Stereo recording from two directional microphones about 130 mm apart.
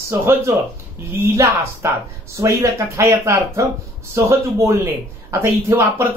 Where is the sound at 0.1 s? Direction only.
20° right (ahead or behind).